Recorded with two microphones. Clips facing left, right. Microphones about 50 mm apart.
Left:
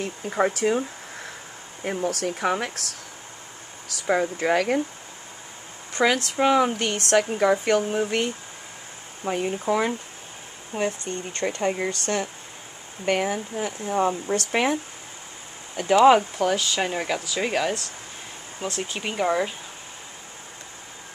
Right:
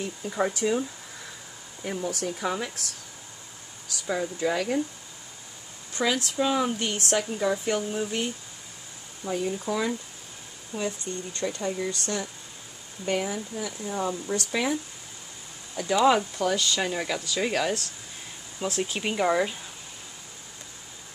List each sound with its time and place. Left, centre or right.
0.2 s speech: left
0.7 s a sound: left
1.8 s speech: left
2.0 s speech: left
4.0 s speech: left
5.9 s speech: left
15.7 s speech: left
16.5 s speech: centre
18.7 s speech: centre